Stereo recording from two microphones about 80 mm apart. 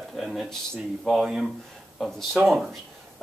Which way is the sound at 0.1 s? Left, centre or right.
Centre.